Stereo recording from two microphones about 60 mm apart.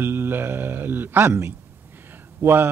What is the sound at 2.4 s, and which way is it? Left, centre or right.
Speech, right.